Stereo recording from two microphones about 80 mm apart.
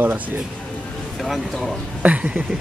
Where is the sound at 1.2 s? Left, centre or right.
Centre.